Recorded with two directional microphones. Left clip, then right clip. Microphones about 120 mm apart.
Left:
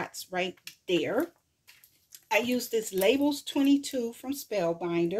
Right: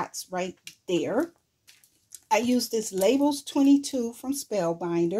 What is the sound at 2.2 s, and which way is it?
Speech, 40° right (ahead or behind).